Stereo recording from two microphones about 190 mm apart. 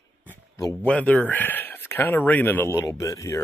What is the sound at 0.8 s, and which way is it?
Speech, 5° left (ahead or behind).